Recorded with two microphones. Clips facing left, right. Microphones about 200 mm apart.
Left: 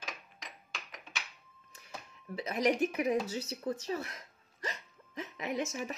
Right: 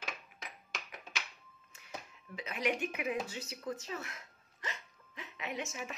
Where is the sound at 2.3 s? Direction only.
40° left (ahead or behind).